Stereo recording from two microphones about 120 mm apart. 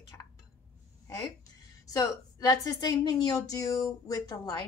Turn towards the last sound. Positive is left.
turn(degrees=30)  # may be behind; listen again after turning